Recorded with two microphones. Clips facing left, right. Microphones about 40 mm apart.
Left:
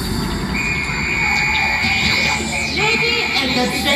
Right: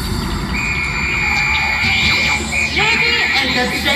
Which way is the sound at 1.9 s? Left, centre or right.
Right.